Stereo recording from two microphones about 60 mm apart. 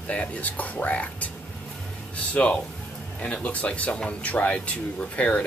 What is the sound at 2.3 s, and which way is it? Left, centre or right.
Speech, left.